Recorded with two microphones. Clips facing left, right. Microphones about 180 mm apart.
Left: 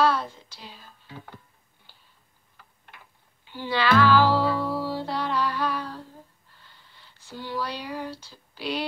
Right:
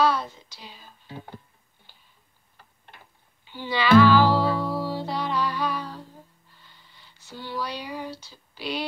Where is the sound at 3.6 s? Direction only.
10° right (ahead or behind).